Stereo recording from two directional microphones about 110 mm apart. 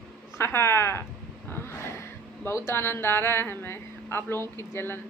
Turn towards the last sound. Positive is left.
turn(degrees=20)  # may be behind; listen again after turning